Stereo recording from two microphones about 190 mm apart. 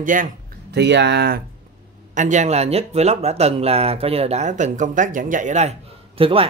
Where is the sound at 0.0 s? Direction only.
45° right (ahead or behind).